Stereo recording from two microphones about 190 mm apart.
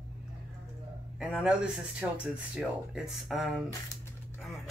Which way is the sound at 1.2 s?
5° right (ahead or behind).